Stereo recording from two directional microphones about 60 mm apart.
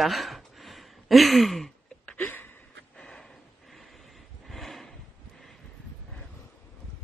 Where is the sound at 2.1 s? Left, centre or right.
Left.